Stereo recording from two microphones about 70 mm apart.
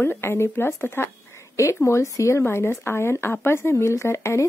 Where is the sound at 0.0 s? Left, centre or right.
Left.